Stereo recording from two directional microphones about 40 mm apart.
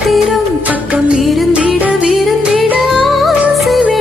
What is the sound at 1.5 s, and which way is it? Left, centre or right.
Music, right.